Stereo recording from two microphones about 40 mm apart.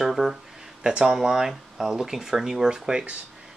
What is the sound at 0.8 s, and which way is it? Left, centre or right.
Speech, centre.